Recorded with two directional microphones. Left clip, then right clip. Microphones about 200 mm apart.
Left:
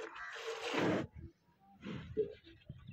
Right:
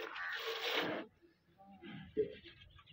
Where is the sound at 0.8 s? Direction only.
50° left (ahead or behind).